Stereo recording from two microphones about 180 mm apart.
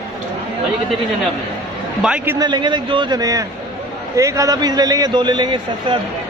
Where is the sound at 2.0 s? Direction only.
5° right (ahead or behind).